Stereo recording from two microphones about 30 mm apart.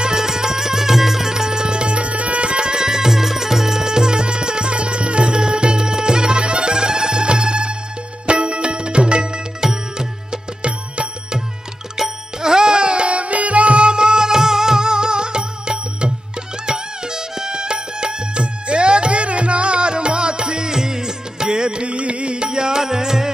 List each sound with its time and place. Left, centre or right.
0.0 s music: centre
1.3 s music: right
9.6 s music: right
12.4 s music: right
13.1 s music: right; by 23.3 s centre